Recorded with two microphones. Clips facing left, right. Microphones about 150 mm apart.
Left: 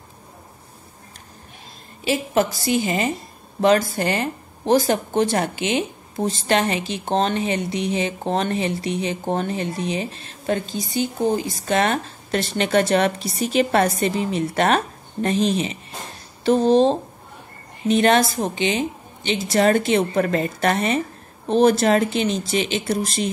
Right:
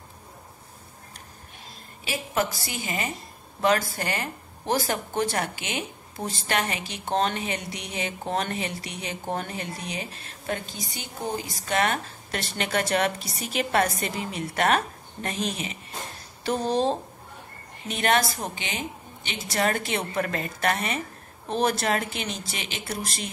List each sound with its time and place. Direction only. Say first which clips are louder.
2.0 s speech: left 7 dB; 25° left (ahead or behind)